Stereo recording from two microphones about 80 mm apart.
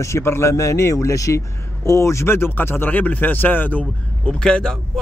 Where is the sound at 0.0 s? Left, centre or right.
Left.